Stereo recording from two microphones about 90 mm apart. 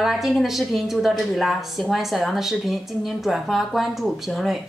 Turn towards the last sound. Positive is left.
turn(degrees=0)  # may be behind; listen again after turning